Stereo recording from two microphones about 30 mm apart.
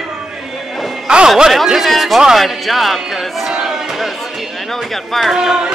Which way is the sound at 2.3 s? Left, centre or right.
Centre.